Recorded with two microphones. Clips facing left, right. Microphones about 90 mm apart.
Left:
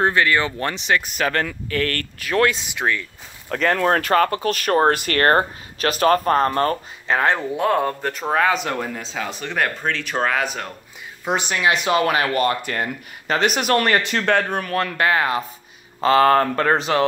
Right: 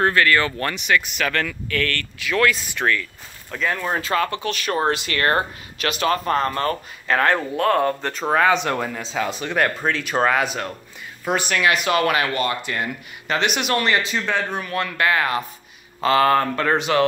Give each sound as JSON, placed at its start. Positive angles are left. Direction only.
{"t": 0.0, "sound": "speech", "side_deg": 20}
{"t": 2.6, "sound": "speech", "side_deg": 15}
{"t": 3.4, "sound": "speech", "side_deg": 85}
{"t": 4.1, "sound": "speech", "side_deg": 40}
{"t": 7.1, "sound": "speech", "side_deg": 15}
{"t": 11.2, "sound": "speech", "side_deg": 20}